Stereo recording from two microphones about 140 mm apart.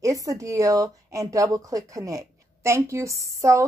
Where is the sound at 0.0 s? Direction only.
25° right (ahead or behind).